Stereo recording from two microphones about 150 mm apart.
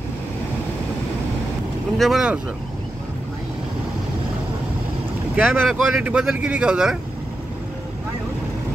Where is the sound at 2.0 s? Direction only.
5° right (ahead or behind).